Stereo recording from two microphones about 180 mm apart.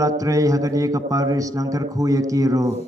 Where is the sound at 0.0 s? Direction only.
20° right (ahead or behind).